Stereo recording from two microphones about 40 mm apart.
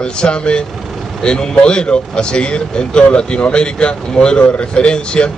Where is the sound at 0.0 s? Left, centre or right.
Left.